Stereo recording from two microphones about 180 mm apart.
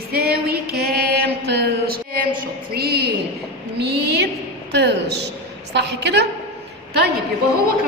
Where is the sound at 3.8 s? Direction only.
65° right (ahead or behind).